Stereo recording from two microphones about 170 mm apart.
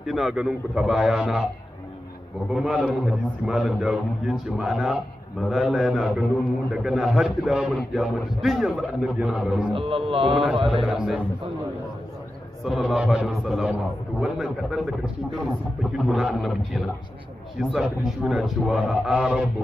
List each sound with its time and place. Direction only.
0.0 s a man's voice: centre (ahead or behind)
2.5 s a man's voice: 5° right (ahead or behind)
9.7 s speech: 30° right (ahead or behind)
10.3 s a man's voice: centre (ahead or behind)
12.6 s a man's voice: 5° right (ahead or behind)